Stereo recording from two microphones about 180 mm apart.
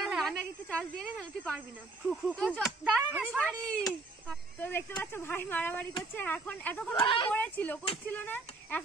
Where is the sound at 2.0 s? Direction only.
5° left (ahead or behind).